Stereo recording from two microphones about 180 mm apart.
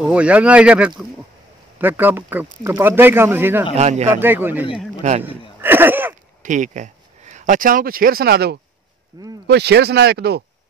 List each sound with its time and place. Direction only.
0.1 s speech: 5° right (ahead or behind)
3.7 s speech: 40° right (ahead or behind)
4.2 s speech: 10° right (ahead or behind)
5.6 s a sound: 10° right (ahead or behind)
6.4 s speech: 45° right (ahead or behind); by 8.5 s 60° right (ahead or behind)
9.1 s speech: 20° right (ahead or behind)
9.5 s speech: 65° right (ahead or behind)